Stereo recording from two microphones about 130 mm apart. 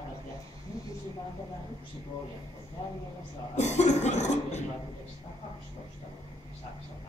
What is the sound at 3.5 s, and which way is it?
Speech, 60° left (ahead or behind).